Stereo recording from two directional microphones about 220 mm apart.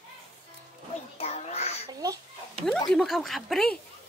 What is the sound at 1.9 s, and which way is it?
Speech, 15° right (ahead or behind).